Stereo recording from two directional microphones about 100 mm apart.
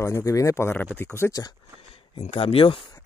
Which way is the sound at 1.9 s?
85° left.